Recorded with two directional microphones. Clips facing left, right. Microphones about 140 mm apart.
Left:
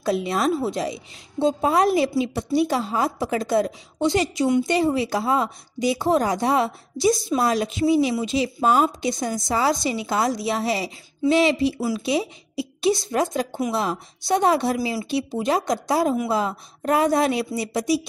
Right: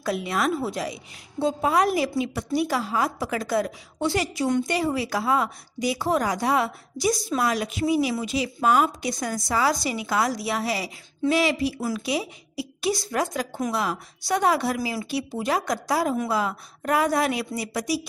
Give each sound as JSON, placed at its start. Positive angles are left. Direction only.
{"t": 0.0, "sound": "speech", "side_deg": 25}